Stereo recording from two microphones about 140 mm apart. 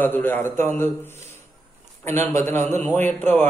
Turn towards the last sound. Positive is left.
turn(degrees=15)  # may be behind; listen again after turning